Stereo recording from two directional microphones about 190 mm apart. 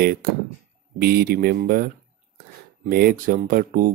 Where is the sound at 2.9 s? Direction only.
55° right (ahead or behind).